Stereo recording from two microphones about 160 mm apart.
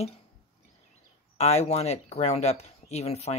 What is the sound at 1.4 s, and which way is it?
Speech, 40° left (ahead or behind).